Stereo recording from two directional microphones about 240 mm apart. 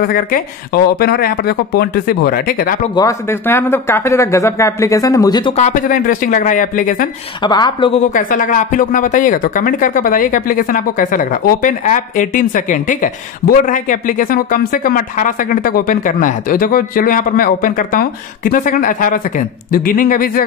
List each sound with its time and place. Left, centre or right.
0.0 s speech: left
3.0 s speech: centre
5.6 s speech: left
7.4 s speech: centre; by 20.4 s left